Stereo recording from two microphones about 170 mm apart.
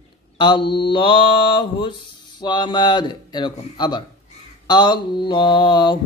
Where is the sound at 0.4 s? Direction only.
30° left (ahead or behind).